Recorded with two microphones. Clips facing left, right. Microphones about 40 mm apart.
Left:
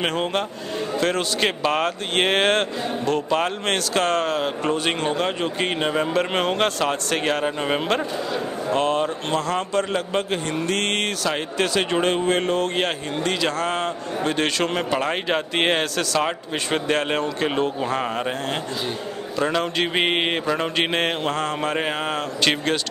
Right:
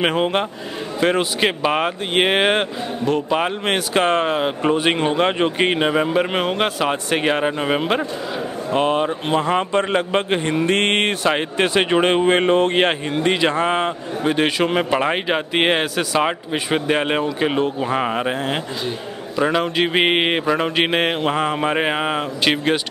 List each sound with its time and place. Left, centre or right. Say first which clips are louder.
0.0 s speech: right 4 dB; centre